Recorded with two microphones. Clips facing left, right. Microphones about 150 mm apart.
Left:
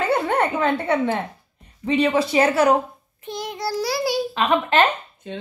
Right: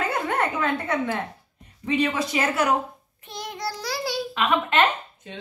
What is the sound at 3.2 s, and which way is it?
Child singing, centre (ahead or behind).